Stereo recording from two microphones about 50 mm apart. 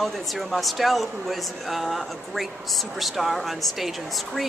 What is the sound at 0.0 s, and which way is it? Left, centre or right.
Speech, centre.